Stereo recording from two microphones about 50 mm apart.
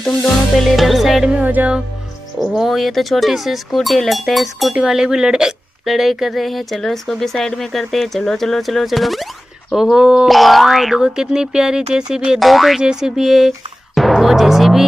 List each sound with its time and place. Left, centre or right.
0.7 s speech: centre
1.4 s music: right
2.5 s speech: centre
4.7 s speech: centre
9.9 s speech: centre
10.2 s speech: centre
12.4 s speech: centre
13.9 s timpani: centre